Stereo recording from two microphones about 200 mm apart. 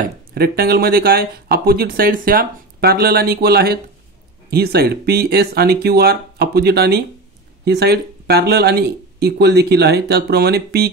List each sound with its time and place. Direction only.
0.3 s speech: 50° right (ahead or behind)